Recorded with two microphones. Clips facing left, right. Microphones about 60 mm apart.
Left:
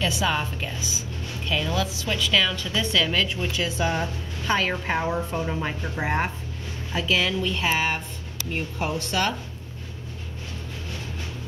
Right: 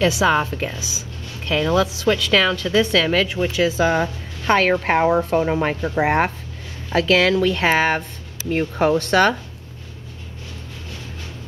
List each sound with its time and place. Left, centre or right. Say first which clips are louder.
0.0 s a woman's voice: right 8 dB; right
0.3 s a woman's voice: right 8 dB; right
3.5 s a woman's voice: right 8 dB; right